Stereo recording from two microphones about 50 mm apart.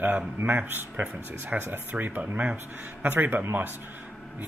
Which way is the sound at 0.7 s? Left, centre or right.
Right.